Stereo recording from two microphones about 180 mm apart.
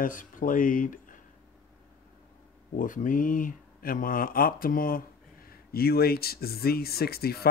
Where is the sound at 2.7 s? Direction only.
45° left (ahead or behind).